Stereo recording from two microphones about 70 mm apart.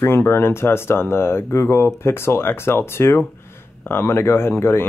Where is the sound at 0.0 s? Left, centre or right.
Left.